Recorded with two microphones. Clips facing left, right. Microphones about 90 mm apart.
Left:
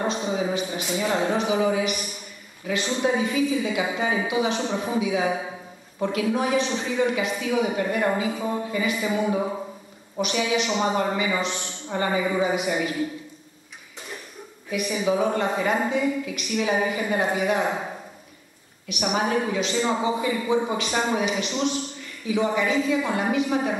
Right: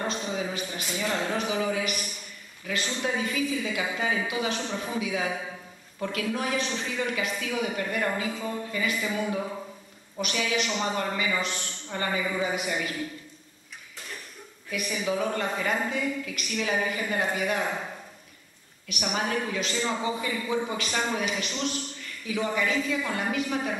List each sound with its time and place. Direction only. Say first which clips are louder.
0.2 s a sound: left 6 dB; 15° left (ahead or behind)
0.7 s a man's voice: left 3 dB; 5° left (ahead or behind)
2.9 s a man's voice: left 7 dB; 15° left (ahead or behind)
14.7 s a man's voice: left 5 dB; 10° left (ahead or behind)
19.0 s a man's voice: left 5 dB; 15° left (ahead or behind)